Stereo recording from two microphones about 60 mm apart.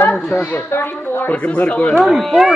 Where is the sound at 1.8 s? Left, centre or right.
Centre.